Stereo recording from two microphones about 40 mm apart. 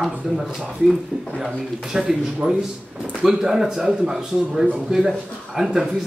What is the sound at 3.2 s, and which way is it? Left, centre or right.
Speech, centre.